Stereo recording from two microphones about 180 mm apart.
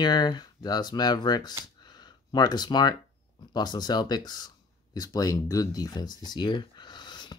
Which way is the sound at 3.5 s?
25° left (ahead or behind).